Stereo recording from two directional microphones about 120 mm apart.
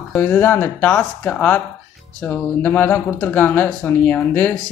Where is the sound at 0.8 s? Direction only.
5° left (ahead or behind).